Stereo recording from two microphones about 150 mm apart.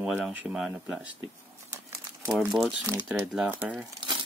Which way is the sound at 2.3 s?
Centre (ahead or behind).